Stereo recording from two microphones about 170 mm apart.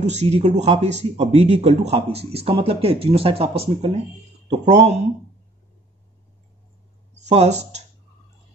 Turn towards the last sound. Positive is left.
turn(degrees=-40)  # may be behind; listen again after turning